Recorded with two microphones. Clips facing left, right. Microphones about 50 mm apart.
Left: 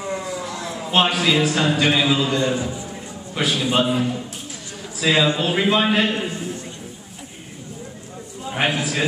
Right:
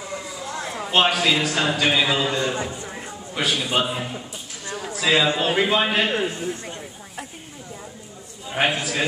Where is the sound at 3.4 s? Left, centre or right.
Centre.